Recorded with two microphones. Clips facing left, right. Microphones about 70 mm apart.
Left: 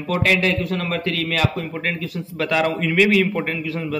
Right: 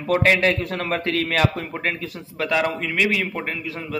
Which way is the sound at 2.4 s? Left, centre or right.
Centre.